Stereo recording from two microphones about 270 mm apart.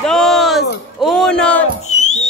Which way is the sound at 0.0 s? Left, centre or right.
Centre.